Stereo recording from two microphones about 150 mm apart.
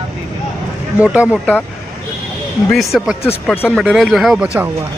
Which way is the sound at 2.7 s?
Centre (ahead or behind).